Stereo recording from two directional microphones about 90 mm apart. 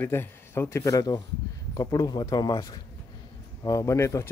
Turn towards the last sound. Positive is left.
turn(degrees=30)  # may be behind; listen again after turning